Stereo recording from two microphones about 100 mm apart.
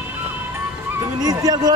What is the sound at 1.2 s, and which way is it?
Speech, 40° right (ahead or behind).